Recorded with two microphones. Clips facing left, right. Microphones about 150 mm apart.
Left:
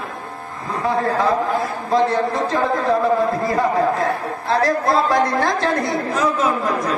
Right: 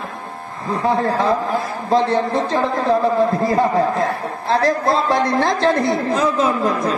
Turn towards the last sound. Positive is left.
turn(degrees=-30)  # may be behind; listen again after turning